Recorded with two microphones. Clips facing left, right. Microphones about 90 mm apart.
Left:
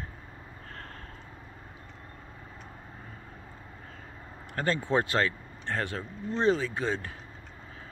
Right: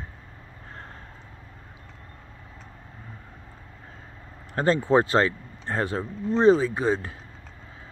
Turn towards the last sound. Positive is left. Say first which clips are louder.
# right 7 dB
turn(degrees=-20)  # may be behind; listen again after turning